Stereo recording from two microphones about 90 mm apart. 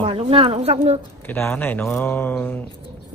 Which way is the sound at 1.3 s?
25° left (ahead or behind).